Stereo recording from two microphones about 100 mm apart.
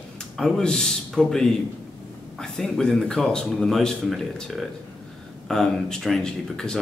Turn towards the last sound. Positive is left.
turn(degrees=5)  # may be behind; listen again after turning